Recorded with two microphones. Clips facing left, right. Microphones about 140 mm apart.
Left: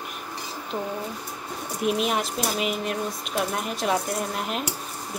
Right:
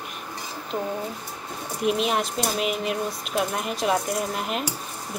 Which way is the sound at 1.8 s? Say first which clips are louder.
Right 1 dB; centre (ahead or behind).